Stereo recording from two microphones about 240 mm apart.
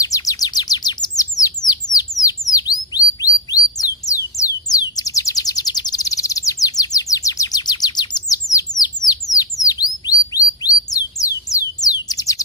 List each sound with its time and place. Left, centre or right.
0.0 s chirp: centre
1.3 s bird: centre